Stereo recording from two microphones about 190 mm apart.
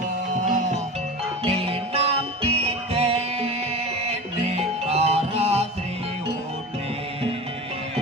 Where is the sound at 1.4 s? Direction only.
30° right (ahead or behind).